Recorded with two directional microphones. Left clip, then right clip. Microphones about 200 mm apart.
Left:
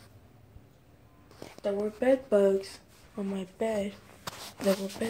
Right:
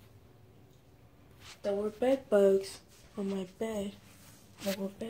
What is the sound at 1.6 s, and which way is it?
Speech, centre (ahead or behind).